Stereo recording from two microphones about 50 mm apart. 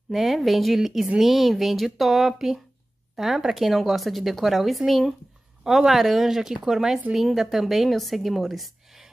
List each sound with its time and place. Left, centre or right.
0.1 s a woman's voice: centre